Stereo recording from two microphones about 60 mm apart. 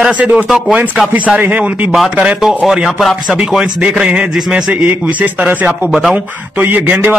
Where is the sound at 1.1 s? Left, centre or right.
Right.